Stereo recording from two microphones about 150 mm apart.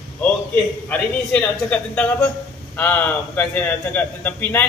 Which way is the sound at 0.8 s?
10° left (ahead or behind).